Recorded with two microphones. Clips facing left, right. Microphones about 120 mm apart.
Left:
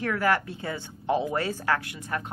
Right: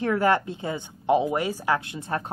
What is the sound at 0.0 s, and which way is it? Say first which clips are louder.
A woman's voice: right 3 dB; 25° right (ahead or behind).